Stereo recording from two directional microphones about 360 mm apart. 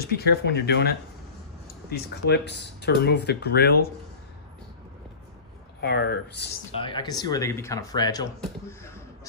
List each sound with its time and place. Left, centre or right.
0.0 s speech: left
1.9 s speech: left
5.8 s speech: left
6.7 s speech: centre